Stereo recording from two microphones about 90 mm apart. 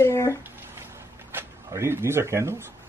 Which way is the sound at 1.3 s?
25° right (ahead or behind).